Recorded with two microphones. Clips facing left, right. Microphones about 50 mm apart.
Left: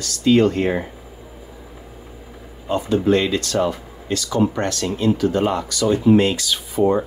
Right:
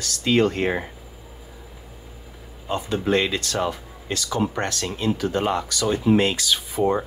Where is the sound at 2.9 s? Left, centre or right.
Right.